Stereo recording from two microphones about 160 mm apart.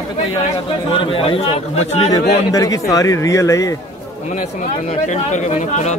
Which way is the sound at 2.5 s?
20° left (ahead or behind).